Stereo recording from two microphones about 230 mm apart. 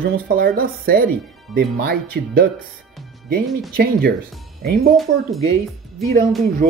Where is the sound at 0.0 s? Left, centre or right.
Right.